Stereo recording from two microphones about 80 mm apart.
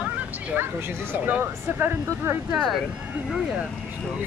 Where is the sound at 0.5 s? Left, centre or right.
Right.